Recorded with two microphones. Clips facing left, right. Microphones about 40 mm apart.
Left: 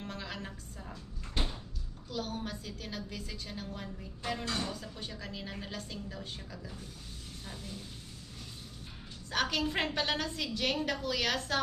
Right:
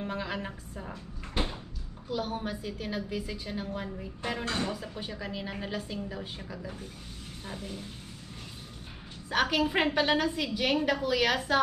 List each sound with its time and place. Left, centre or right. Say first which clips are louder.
0.0 s a woman's voice: right 7 dB; centre
9.3 s a woman's voice: right 5 dB; centre